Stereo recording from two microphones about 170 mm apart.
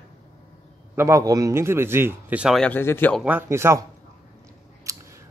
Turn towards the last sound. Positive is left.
turn(degrees=-20)  # may be behind; listen again after turning